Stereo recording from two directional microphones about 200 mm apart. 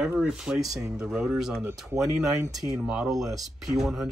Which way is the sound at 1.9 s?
15° right (ahead or behind).